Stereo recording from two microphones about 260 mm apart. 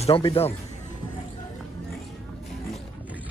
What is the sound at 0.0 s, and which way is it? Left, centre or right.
Speech, left.